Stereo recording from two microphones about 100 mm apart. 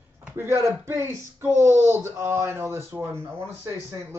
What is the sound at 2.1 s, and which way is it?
Speech, 30° right (ahead or behind).